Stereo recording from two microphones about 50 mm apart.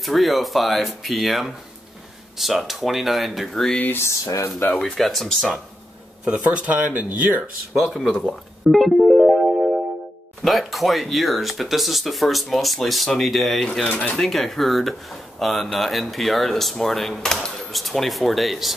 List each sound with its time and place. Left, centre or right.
0.0 s speech: centre
4.0 s speech: left
4.7 s speech: centre
6.2 s speech: right
7.7 s speech: centre
9.2 s music: centre
10.4 s speech: centre
13.8 s speech: left
14.1 s speech: centre